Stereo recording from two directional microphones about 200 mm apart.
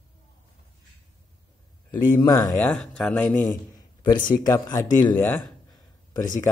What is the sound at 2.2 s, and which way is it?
Speech, 20° left (ahead or behind).